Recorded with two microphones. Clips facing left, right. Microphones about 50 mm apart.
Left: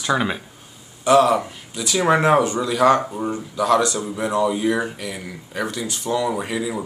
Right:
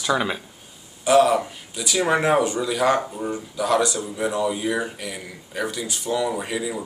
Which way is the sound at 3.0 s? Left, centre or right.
Left.